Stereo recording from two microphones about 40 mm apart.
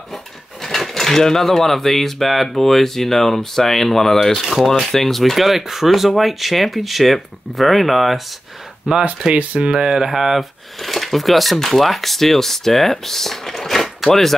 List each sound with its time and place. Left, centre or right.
0.1 s speech: centre
8.9 s speech: right
9.8 s speech: centre